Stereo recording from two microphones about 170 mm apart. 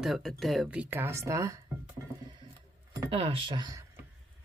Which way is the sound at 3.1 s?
30° right (ahead or behind).